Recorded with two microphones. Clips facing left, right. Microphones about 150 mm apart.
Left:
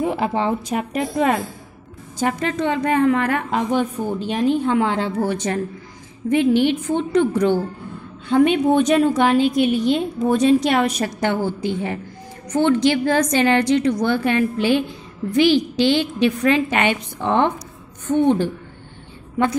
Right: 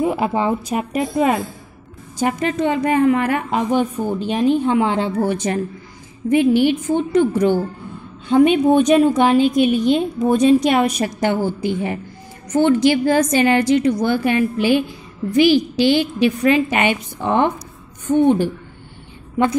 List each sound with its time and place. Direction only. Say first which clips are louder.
0.0 s a woman's voice: right 2 dB; 10° right (ahead or behind)